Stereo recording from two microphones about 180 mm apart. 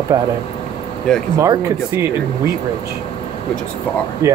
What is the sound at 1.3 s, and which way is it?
Speech, 15° right (ahead or behind).